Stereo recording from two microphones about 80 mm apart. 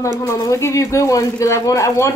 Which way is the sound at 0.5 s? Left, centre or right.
Left.